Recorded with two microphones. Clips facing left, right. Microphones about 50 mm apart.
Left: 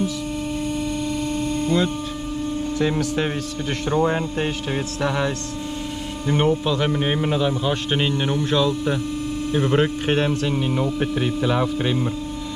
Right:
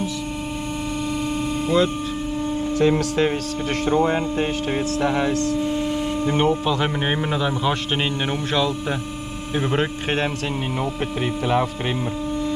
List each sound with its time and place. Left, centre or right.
1.0 s hum: centre
6.2 s a man's voice: centre
9.6 s speech: centre